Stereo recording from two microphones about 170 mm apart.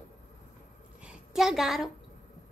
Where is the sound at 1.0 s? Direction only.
5° right (ahead or behind).